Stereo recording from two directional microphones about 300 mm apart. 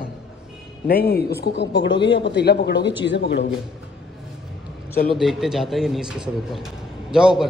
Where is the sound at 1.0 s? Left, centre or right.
Left.